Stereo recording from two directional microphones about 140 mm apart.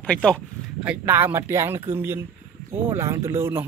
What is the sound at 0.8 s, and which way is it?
A man's voice, 15° right (ahead or behind).